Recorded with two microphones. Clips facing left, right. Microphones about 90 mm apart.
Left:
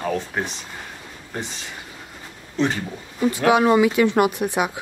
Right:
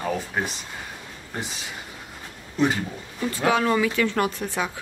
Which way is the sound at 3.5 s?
15° left (ahead or behind).